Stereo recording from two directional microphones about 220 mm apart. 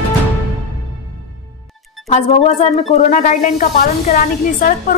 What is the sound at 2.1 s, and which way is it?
Speech, 30° left (ahead or behind).